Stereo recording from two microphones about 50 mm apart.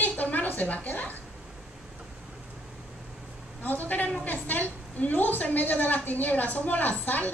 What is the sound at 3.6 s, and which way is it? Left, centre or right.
A woman's voice, left.